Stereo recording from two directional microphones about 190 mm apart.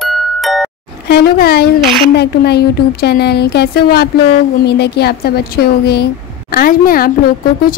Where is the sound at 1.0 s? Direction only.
55° left (ahead or behind).